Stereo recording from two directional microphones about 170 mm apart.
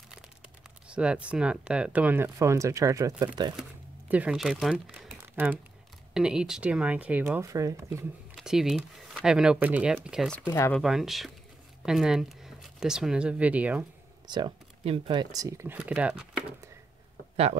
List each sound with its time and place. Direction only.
0.8 s speech: 5° right (ahead or behind); by 3.5 s 20° right (ahead or behind)
4.1 s speech: 5° right (ahead or behind)
8.4 s speech: 5° right (ahead or behind)
10.3 s speech: 15° left (ahead or behind)
10.8 s speech: centre (ahead or behind)
14.2 s speech: 25° right (ahead or behind); by 16.7 s 10° right (ahead or behind)